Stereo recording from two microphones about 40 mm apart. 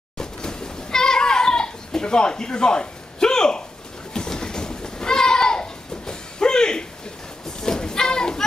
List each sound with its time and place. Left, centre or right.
0.2 s goat: centre
4.1 s a sound: centre
7.6 s children playing: centre